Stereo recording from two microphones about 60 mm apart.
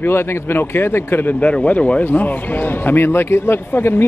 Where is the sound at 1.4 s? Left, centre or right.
Left.